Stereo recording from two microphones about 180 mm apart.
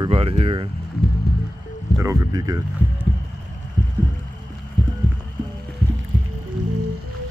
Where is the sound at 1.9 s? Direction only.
20° right (ahead or behind).